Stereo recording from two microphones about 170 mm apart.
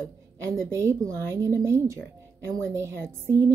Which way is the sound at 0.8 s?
15° right (ahead or behind).